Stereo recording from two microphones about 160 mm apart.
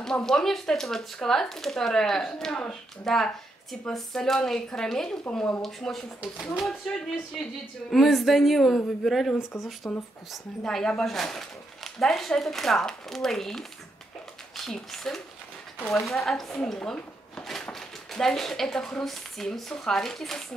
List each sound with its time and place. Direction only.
0.0 s speech: 5° left (ahead or behind)
9.4 s speech: 15° left (ahead or behind)
10.3 s a woman's voice: 5° left (ahead or behind)